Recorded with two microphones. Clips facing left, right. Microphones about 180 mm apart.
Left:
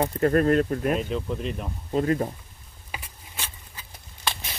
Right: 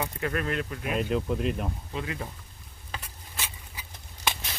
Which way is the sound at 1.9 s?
40° left (ahead or behind).